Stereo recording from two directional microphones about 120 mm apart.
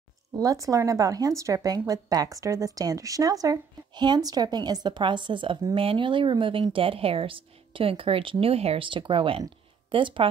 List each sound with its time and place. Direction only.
0.4 s speech: 30° right (ahead or behind); by 10.2 s 45° right (ahead or behind)